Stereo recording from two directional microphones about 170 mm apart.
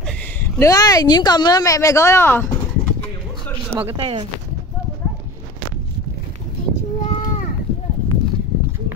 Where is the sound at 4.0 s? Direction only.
30° right (ahead or behind).